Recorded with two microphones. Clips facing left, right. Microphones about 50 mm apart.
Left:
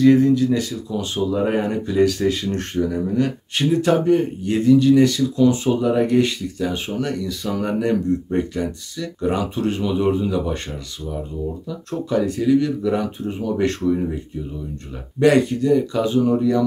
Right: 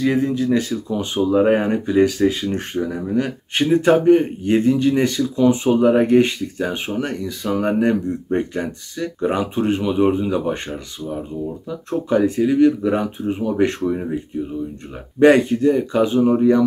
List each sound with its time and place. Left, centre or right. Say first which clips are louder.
0.0 s speech: left 5 dB; centre
0.3 s speech: left 1 dB; right
3.5 s speech: right 3 dB; right